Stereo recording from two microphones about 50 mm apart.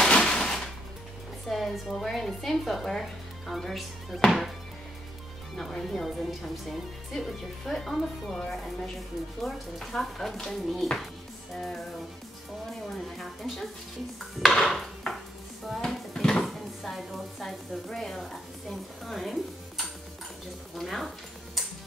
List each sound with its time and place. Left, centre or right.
0.1 s a sound: centre
1.5 s speech: centre
5.6 s speech: centre
6.0 s speech: centre
12.9 s speech: centre
14.4 s dishes: centre
15.8 s cupboard open or close: centre
16.4 s speech: centre
20.7 s speech: centre